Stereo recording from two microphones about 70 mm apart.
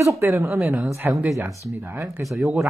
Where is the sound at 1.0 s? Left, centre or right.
Right.